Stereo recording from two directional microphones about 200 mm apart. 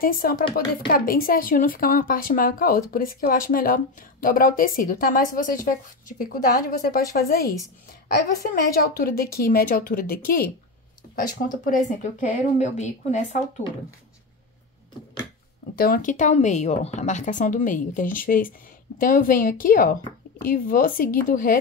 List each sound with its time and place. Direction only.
0.0 s a woman's voice: 50° left (ahead or behind)
15.8 s a woman's voice: 45° left (ahead or behind)